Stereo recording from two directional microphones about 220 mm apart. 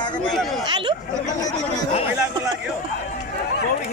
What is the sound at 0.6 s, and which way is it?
Speech, 20° right (ahead or behind).